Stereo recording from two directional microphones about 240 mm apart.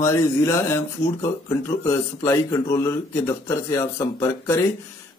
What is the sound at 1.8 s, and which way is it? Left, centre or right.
Speech, centre.